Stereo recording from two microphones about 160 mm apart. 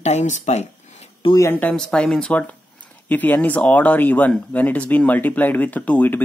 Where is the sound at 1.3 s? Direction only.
15° left (ahead or behind).